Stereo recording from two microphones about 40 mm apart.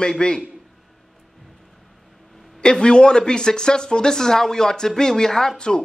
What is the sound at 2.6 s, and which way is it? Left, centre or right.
Speech, left.